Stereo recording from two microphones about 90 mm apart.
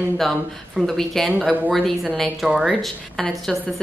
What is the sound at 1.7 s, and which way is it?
Speech, centre (ahead or behind).